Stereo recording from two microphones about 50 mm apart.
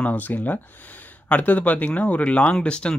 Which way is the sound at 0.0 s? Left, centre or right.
Left.